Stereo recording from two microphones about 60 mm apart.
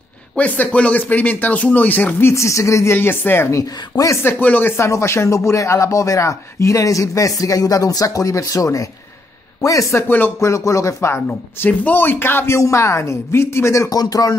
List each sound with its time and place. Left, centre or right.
0.4 s speech: left
2.3 s speech: left
2.9 s a man's voice: left
4.4 s speech: left
4.7 s speech: left
5.2 s speech: left
10.0 s a man's voice: left
10.4 s speech: left
11.2 s a man's voice: left
12.5 s speech: left
13.8 s speech: left